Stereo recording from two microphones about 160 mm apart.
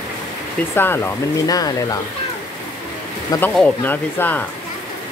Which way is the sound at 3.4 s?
10° left (ahead or behind).